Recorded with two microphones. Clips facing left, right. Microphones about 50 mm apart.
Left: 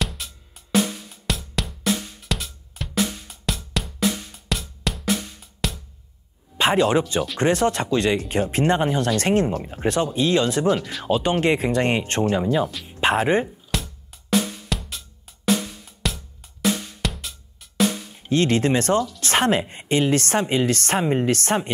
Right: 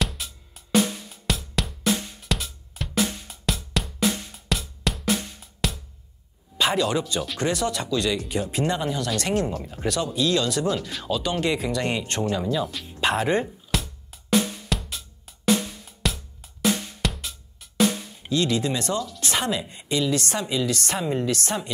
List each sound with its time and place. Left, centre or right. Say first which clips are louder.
0.0 s music: even; centre
6.6 s a woman's voice: left 4 dB; left
13.7 s music: even; centre
18.3 s a woman's voice: left 5 dB; left